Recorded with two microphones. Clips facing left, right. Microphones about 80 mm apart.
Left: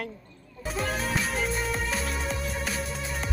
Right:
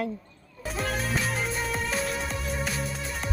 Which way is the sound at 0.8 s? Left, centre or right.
Centre.